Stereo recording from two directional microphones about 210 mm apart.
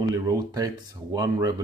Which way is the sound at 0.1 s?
15° right (ahead or behind).